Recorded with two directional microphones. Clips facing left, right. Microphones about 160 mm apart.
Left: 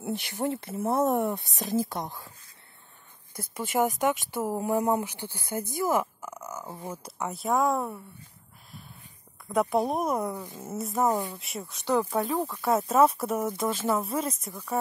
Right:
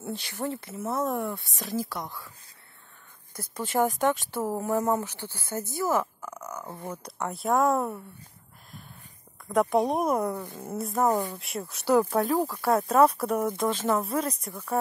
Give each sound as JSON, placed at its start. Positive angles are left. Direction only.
{"t": 0.1, "sound": "speech", "side_deg": 20}
{"t": 3.3, "sound": "speech", "side_deg": 10}
{"t": 9.5, "sound": "speech", "side_deg": 0}